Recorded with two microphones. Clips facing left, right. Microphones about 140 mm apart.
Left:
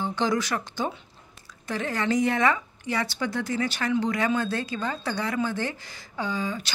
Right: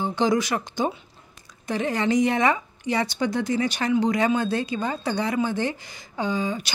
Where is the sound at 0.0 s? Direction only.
15° right (ahead or behind).